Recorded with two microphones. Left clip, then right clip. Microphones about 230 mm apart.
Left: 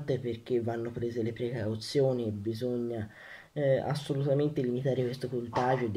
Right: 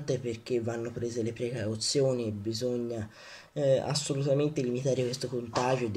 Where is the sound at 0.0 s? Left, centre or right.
Centre.